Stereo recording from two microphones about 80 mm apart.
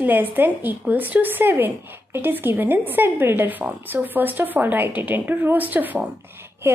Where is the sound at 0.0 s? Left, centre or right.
Right.